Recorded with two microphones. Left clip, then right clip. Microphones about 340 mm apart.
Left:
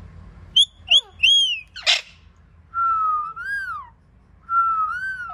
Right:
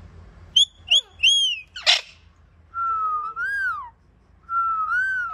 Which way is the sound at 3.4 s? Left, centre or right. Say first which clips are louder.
Right 3 dB; centre.